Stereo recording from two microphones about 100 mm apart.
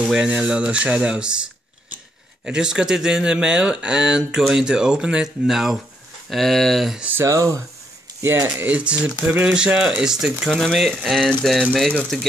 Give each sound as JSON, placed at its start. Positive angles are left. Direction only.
{"t": 0.1, "sound": "speech", "side_deg": -10}
{"t": 7.0, "sound": "speech", "side_deg": -20}
{"t": 7.2, "sound": "speech", "side_deg": -30}